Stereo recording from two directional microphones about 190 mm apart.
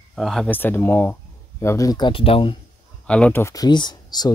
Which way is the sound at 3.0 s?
5° left (ahead or behind).